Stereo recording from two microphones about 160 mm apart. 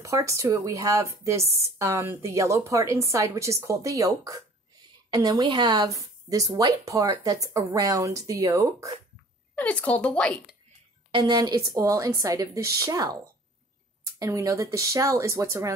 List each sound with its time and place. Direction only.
0.0 s speech: 20° right (ahead or behind)
9.6 s speech: 10° left (ahead or behind)
11.1 s speech: 30° right (ahead or behind)